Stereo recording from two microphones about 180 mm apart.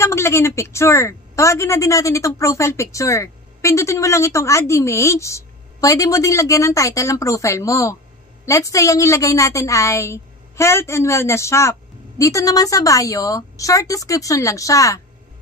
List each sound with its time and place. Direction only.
0.0 s a woman's voice: 15° left (ahead or behind)